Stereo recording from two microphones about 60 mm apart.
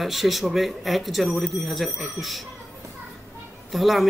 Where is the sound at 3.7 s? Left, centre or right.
Centre.